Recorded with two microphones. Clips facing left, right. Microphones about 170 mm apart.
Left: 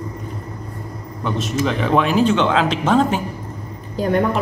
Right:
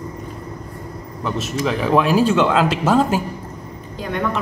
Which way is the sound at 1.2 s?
5° right (ahead or behind).